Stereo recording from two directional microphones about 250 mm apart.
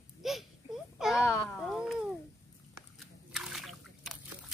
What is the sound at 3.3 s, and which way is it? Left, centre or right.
Drip, centre.